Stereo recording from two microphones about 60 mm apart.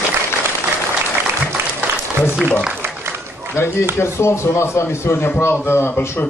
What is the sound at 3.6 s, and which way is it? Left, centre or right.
A man's voice, left.